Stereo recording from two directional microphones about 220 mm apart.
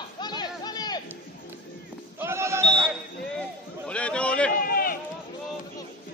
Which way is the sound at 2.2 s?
10° right (ahead or behind).